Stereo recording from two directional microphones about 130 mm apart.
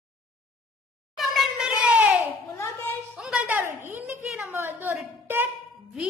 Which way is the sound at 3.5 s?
15° right (ahead or behind).